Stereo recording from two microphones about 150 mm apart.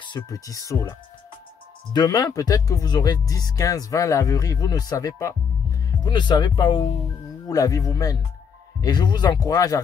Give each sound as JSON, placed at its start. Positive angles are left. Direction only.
{"t": 0.0, "sound": "speech", "side_deg": 25}